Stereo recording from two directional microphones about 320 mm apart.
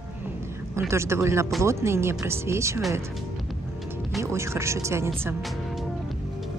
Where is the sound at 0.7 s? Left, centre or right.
Centre.